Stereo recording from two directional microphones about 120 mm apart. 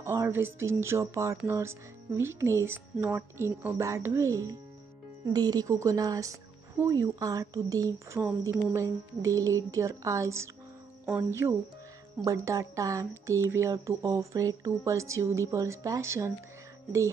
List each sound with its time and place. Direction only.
0.1 s speech: 20° right (ahead or behind)